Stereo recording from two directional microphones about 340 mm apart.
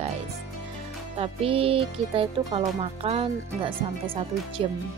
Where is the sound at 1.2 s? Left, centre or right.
Centre.